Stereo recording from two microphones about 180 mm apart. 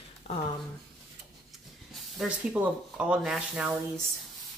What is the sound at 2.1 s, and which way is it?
Speech, 5° right (ahead or behind).